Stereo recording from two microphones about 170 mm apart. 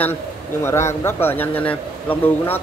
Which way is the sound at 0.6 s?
15° left (ahead or behind).